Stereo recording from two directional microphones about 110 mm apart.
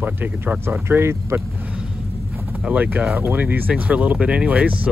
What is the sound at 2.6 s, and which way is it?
Speech, 15° right (ahead or behind).